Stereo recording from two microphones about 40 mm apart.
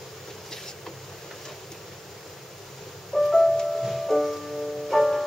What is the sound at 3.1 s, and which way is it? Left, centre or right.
Music, centre.